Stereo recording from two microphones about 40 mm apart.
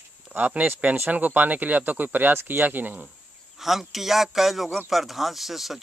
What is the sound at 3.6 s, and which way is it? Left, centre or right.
Speech, centre.